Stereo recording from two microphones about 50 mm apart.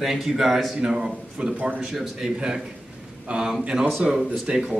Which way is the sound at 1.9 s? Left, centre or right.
Centre.